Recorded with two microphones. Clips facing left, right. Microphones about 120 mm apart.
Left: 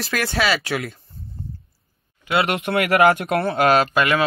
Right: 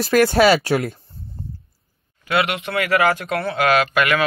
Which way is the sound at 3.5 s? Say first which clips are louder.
Even; 35° left (ahead or behind).